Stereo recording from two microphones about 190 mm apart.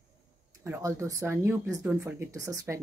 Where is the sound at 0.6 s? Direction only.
15° right (ahead or behind).